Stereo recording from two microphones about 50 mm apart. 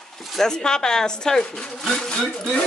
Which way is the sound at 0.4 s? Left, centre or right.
Centre.